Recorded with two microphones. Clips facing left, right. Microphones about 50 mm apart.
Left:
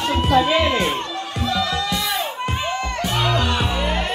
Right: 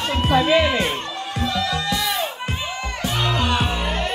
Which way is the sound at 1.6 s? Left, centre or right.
Centre.